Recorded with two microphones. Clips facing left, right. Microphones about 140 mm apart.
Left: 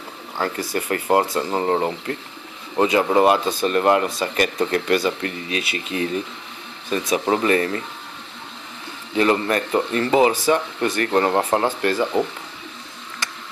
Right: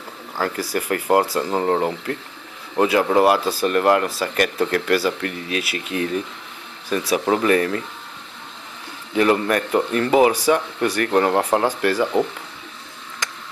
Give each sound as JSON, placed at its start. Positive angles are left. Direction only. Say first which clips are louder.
{"t": 0.4, "sound": "speech", "louder": "right 1 dB", "side_deg": -5}
{"t": 9.1, "sound": "speech", "louder": "right 1 dB", "side_deg": -5}